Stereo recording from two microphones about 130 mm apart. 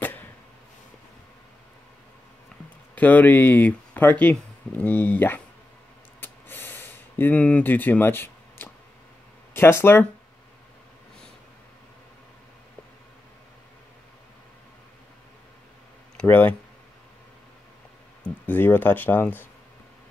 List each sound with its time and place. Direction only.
3.0 s speech: 10° left (ahead or behind)
6.2 s a sound: 15° left (ahead or behind)
9.5 s speech: 15° left (ahead or behind)
16.2 s speech: 15° left (ahead or behind)
18.2 s speech: 15° left (ahead or behind)